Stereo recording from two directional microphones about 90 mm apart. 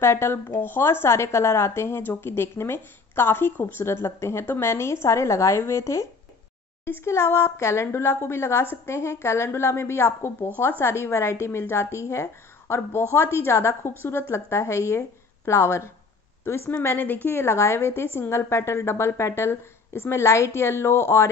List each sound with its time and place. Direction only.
0.0 s a woman's voice: 30° left (ahead or behind)